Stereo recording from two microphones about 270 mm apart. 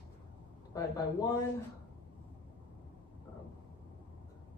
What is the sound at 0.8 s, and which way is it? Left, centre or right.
Speech, centre.